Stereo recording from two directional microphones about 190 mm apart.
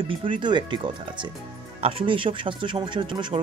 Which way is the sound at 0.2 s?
25° right (ahead or behind).